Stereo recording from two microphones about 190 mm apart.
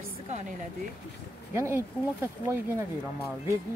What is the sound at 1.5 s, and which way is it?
Speech, 15° right (ahead or behind).